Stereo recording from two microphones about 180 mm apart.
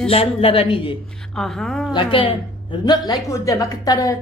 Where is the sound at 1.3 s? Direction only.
Centre (ahead or behind).